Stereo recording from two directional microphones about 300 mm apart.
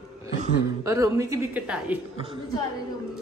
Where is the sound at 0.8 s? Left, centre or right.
Centre.